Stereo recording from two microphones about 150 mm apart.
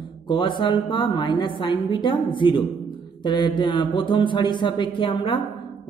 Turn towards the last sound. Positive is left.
turn(degrees=35)  # may be behind; listen again after turning